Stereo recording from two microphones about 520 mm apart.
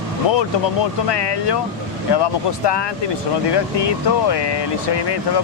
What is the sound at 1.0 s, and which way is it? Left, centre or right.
Speech, left.